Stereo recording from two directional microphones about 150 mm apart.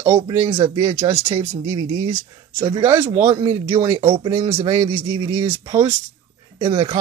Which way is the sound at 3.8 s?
40° right (ahead or behind).